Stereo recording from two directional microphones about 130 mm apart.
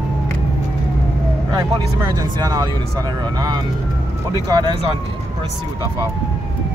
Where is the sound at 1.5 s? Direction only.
30° right (ahead or behind).